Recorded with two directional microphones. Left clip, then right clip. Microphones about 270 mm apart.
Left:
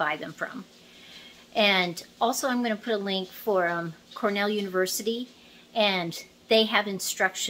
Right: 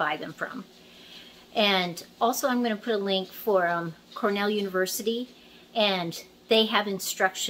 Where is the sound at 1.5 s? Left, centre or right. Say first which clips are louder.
Left 1 dB; centre.